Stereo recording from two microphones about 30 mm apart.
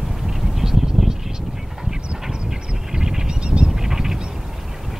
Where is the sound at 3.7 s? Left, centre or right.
Centre.